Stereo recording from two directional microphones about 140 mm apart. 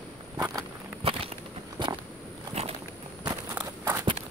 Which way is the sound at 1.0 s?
40° right (ahead or behind).